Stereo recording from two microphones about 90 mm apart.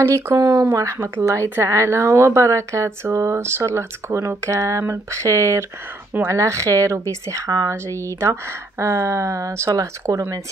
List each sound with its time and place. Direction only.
0.1 s a woman's voice: 35° right (ahead or behind)